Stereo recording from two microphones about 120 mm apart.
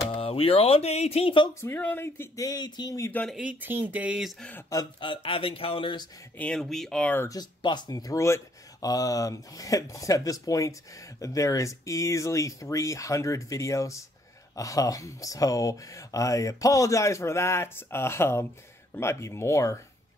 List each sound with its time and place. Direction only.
0.1 s speech: 55° left (ahead or behind)
1.5 s speech: 20° left (ahead or behind)
2.4 s speech: 35° left (ahead or behind)
3.3 s speech: 10° right (ahead or behind)
4.4 s speech: 10° left (ahead or behind)
5.0 s speech: 50° left (ahead or behind)
6.3 s speech: 10° left (ahead or behind)
7.2 s speech: 30° left (ahead or behind)